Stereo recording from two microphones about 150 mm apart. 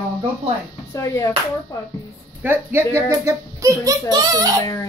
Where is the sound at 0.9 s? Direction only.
20° left (ahead or behind).